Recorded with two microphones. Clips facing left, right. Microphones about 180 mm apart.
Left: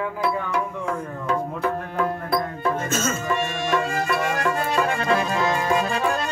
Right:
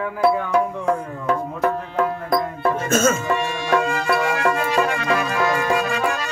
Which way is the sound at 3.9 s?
75° right (ahead or behind).